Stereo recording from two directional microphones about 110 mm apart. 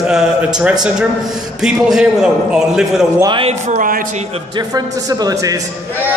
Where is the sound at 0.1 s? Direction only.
5° right (ahead or behind).